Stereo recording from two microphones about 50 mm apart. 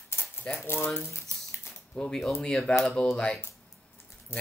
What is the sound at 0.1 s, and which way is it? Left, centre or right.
Typewriter, left.